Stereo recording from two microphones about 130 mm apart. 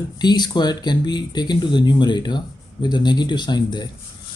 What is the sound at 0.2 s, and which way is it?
Speech, 35° left (ahead or behind).